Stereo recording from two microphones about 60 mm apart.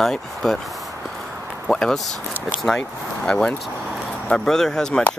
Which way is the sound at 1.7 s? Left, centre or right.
Centre.